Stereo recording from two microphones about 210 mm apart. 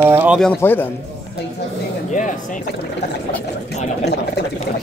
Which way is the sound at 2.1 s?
35° left (ahead or behind).